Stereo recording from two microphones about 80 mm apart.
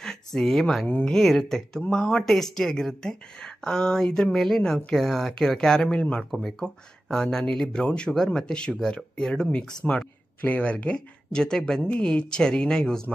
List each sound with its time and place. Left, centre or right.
0.0 s speech: centre
0.8 s speech: centre
1.1 s speech: centre